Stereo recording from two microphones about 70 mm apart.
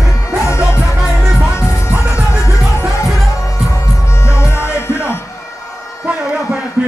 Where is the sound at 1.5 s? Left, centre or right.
Left.